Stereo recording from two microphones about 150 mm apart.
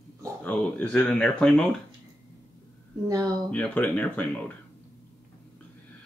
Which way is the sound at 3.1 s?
25° right (ahead or behind).